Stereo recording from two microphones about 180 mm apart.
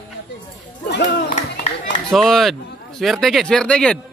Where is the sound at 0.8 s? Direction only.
70° left (ahead or behind).